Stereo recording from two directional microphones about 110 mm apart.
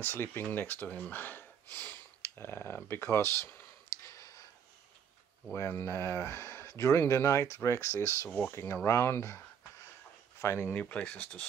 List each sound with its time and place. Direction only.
0.0 s speech: 20° left (ahead or behind)
4.0 s a sound: 30° left (ahead or behind)
5.5 s speech: 20° left (ahead or behind)
8.3 s speech: 15° left (ahead or behind)
10.4 s speech: 25° left (ahead or behind)